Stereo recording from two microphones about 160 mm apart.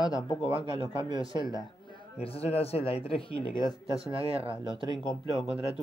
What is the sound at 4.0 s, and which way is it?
Speech, 35° right (ahead or behind).